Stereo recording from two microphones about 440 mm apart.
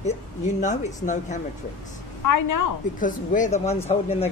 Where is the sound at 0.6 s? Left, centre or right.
Centre.